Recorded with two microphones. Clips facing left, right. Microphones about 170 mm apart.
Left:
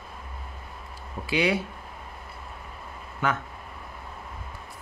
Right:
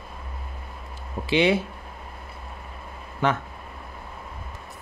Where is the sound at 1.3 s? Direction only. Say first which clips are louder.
Right 4 dB; 25° right (ahead or behind).